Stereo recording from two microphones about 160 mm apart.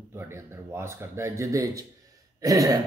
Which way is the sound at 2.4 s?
20° right (ahead or behind).